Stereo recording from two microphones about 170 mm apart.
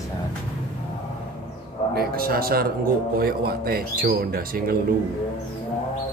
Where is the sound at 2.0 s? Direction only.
60° right (ahead or behind).